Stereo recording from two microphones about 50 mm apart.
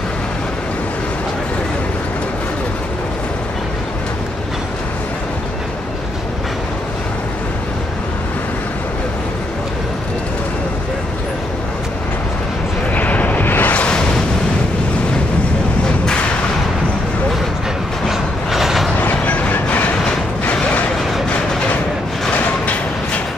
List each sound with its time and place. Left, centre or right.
12.9 s vehicle: left
13.8 s a sound: left
18.0 s train: centre
18.9 s train: left
20.1 s vehicle: left